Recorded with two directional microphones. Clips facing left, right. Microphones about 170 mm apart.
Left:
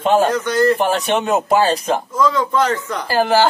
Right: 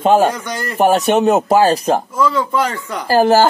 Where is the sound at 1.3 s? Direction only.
40° right (ahead or behind).